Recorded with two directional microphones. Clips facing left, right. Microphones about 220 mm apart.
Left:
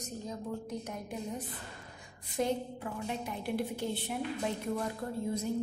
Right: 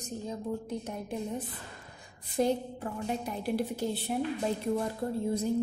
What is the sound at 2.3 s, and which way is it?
A woman's voice, 35° right (ahead or behind).